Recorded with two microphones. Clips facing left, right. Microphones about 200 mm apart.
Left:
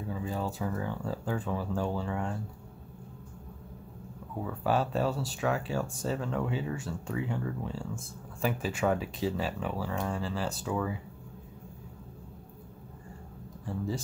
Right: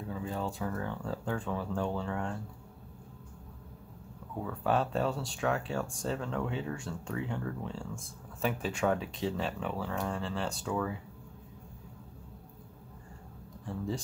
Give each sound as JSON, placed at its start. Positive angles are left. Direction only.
{"t": 0.1, "sound": "speech", "side_deg": 5}
{"t": 4.4, "sound": "speech", "side_deg": 5}
{"t": 13.7, "sound": "speech", "side_deg": 5}